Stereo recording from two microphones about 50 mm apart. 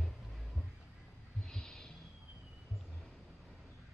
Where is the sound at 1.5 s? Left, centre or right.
Centre.